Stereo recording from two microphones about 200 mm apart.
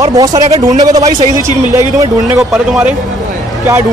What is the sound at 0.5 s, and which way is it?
Speech, 30° right (ahead or behind).